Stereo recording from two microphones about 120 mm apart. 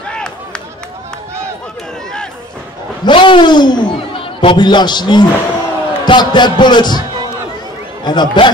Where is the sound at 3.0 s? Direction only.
40° left (ahead or behind).